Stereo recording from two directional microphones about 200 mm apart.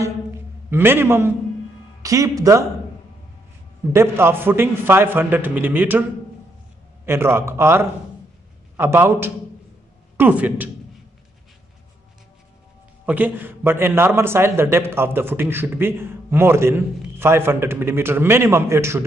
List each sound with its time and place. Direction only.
0.7 s a man's voice: 10° right (ahead or behind)
3.9 s a man's voice: 10° right (ahead or behind)
7.1 s a man's voice: 10° right (ahead or behind)
13.0 s a man's voice: 10° right (ahead or behind)